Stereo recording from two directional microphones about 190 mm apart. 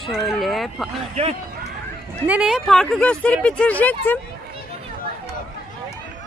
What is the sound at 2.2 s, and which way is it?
Speech, 5° right (ahead or behind).